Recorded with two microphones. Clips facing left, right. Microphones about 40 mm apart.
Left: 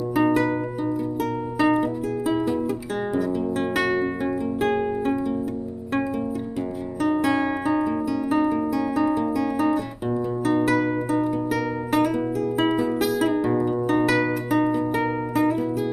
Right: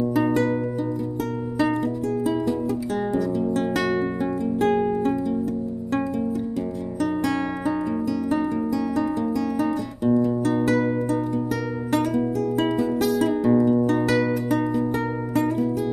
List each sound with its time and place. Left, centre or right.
0.1 s music: centre
1.6 s music: centre
7.0 s music: centre